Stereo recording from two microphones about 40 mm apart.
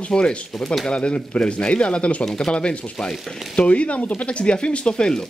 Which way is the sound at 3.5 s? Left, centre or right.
Left.